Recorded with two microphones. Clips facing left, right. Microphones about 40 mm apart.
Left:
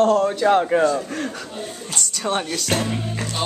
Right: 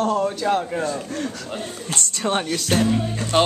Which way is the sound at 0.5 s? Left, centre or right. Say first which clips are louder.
Left 6 dB; left.